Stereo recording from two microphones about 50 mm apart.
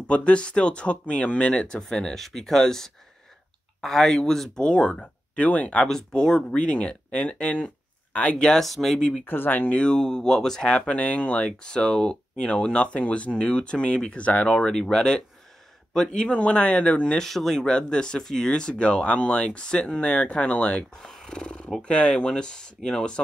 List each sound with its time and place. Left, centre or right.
0.0 s speech: left
5.4 s speech: left
5.9 s speech: centre; by 8.4 s left
8.4 s speech: centre
9.2 s speech: left
9.8 s speech: centre
14.7 s speech: centre
16.3 s speech: left
17.2 s speech: centre; by 20.7 s left
20.7 s speech: centre